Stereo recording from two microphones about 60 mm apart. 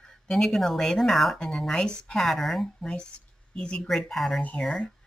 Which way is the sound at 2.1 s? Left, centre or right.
Centre.